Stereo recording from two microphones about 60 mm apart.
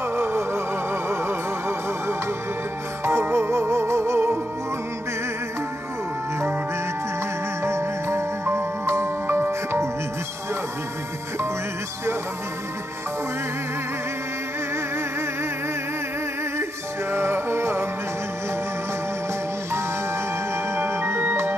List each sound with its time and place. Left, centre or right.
0.0 s music: right
7.6 s music: right
17.1 s music: right
20.7 s music: right